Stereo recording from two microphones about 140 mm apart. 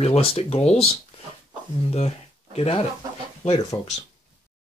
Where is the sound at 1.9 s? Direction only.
45° left (ahead or behind).